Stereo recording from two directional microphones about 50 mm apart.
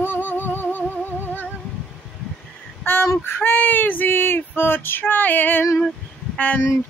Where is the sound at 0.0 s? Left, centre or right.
Left.